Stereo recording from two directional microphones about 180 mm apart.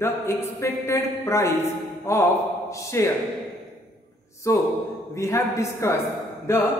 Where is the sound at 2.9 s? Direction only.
15° left (ahead or behind).